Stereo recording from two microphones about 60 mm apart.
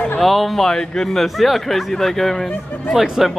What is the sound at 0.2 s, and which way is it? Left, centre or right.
Speech, centre.